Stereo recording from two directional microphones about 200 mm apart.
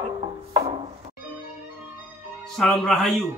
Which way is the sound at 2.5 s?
Centre (ahead or behind).